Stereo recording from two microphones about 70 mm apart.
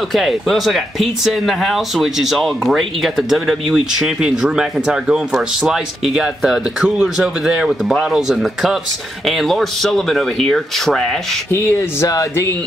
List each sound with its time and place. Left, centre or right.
0.1 s speech: centre
12.1 s speech: left